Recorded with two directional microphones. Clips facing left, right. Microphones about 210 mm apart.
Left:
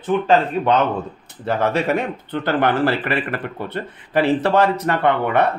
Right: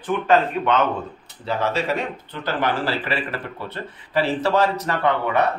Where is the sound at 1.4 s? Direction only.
55° left (ahead or behind).